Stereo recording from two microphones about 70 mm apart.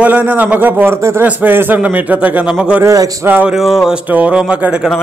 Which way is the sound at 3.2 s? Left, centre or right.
Right.